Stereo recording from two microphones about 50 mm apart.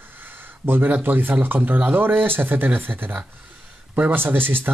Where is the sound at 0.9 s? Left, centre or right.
Right.